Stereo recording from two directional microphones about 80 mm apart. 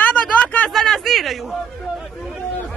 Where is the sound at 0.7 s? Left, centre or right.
Centre.